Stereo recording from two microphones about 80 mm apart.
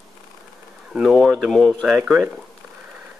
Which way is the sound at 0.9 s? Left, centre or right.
Centre.